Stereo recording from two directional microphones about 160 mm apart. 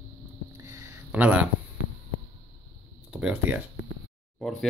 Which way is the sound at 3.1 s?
5° right (ahead or behind).